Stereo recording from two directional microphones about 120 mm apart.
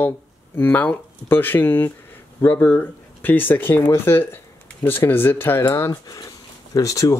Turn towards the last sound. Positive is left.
turn(degrees=30)  # may be behind; listen again after turning